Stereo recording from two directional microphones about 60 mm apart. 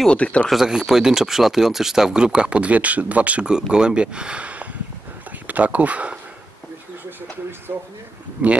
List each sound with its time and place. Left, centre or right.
0.1 s speech: centre
0.5 s speech: centre; by 6.1 s right
7.7 s a sound: right
8.4 s speech: right